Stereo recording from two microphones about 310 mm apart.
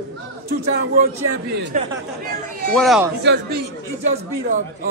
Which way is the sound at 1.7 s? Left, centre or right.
Right.